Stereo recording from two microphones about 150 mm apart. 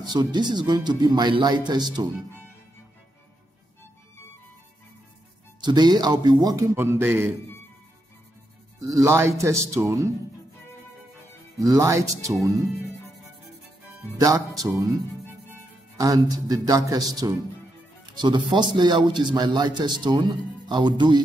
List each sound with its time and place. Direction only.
0.0 s a man's voice: 30° right (ahead or behind)
5.6 s a man's voice: 25° right (ahead or behind)
8.8 s a man's voice: 20° right (ahead or behind)
11.5 s a man's voice: 20° right (ahead or behind)
12.6 s speech: centre (ahead or behind)
14.2 s a man's voice: 25° right (ahead or behind)
16.0 s a man's voice: 25° right (ahead or behind)